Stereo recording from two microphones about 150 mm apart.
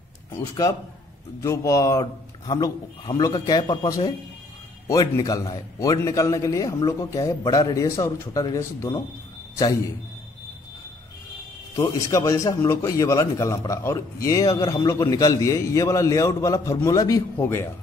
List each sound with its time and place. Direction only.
1.4 s a man's voice: 20° left (ahead or behind)
11.7 s a man's voice: 25° left (ahead or behind)